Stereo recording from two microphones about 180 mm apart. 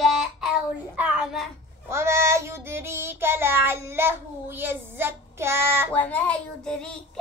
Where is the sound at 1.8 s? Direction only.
15° right (ahead or behind).